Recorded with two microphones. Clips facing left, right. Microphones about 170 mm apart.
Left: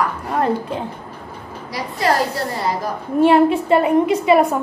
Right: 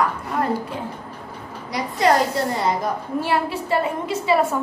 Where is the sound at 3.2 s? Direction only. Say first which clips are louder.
Left 12 dB; 20° left (ahead or behind).